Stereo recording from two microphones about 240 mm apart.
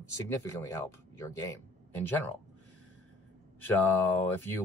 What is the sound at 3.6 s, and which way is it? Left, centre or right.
Speech, centre.